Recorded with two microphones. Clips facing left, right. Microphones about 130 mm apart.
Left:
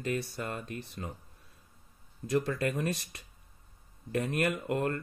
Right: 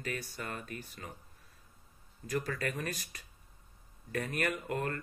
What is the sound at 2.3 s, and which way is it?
Speech, 25° left (ahead or behind).